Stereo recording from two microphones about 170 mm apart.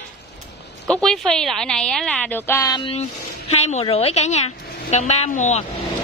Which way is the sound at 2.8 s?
35° left (ahead or behind).